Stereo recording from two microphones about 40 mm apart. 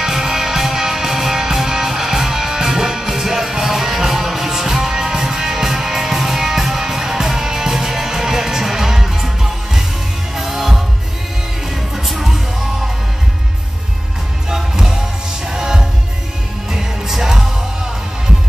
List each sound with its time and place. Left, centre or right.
0.0 s music: centre
14.5 s music: centre